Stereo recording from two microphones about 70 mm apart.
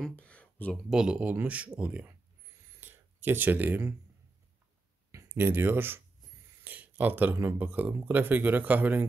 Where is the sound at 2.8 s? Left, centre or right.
Right.